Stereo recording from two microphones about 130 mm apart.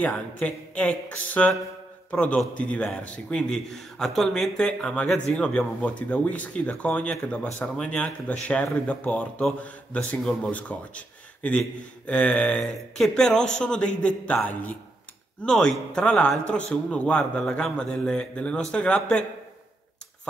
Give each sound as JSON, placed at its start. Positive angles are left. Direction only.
{"t": 0.4, "sound": "a man's voice", "side_deg": 10}